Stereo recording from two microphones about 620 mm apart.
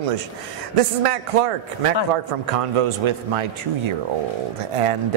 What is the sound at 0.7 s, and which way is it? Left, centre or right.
Speech, right.